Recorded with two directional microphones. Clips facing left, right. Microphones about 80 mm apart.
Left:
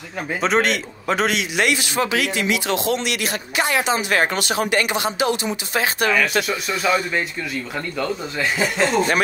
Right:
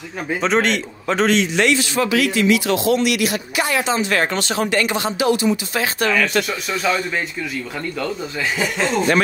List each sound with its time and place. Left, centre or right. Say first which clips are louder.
0.4 s speech: right 1 dB; centre
2.0 s speech: right 3 dB; left
3.8 s speech: even; centre
8.0 s speech: left 1 dB; centre